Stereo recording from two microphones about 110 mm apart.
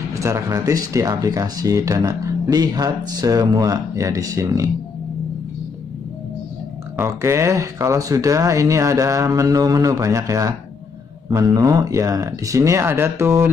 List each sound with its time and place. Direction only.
0.1 s speech: 25° right (ahead or behind)
7.0 s speech: 25° right (ahead or behind)